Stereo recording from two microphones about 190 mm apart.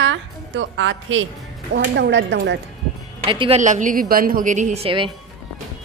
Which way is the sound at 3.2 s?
25° right (ahead or behind).